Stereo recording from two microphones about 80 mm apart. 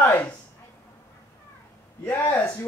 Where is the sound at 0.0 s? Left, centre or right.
Left.